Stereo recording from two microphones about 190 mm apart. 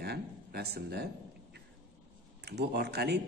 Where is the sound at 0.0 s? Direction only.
60° right (ahead or behind).